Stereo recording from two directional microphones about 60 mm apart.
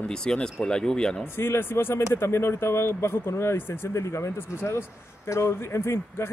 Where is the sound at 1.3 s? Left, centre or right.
Left.